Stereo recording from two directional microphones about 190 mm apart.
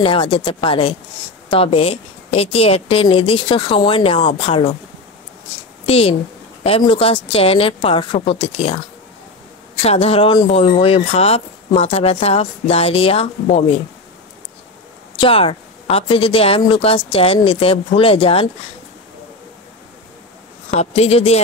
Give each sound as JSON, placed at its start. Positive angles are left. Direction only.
{"t": 0.0, "sound": "a woman's voice", "side_deg": 25}
{"t": 5.9, "sound": "a woman's voice", "side_deg": 30}
{"t": 9.8, "sound": "speech", "side_deg": 30}
{"t": 15.1, "sound": "a woman's voice", "side_deg": 30}
{"t": 20.7, "sound": "speech", "side_deg": 35}